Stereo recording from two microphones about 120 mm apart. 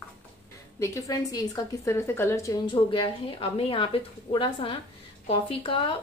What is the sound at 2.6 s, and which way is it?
Speech, 40° left (ahead or behind).